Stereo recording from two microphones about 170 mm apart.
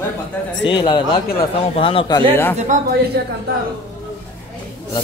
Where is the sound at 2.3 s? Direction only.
10° left (ahead or behind).